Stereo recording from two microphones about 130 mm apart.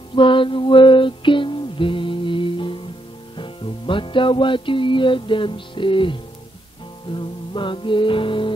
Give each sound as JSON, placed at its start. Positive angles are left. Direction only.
{"t": 0.1, "sound": "music", "side_deg": 40}